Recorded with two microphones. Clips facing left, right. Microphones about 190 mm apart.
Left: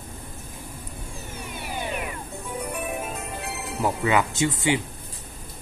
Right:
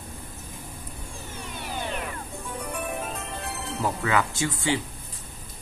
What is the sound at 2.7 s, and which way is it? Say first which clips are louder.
Music: right 1 dB; 10° left (ahead or behind).